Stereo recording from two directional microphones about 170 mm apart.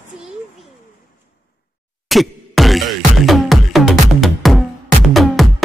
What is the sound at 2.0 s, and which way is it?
Music, centre (ahead or behind).